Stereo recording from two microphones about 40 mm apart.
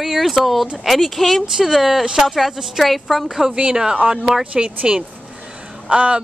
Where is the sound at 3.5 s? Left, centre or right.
Centre.